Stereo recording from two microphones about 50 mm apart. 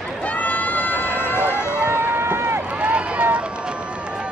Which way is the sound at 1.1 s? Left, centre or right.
Right.